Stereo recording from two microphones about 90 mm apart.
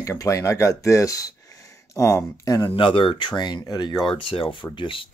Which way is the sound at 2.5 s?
65° left (ahead or behind).